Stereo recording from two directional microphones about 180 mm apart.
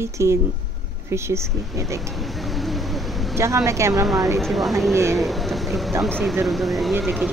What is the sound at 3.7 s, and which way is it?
Speech, 15° right (ahead or behind).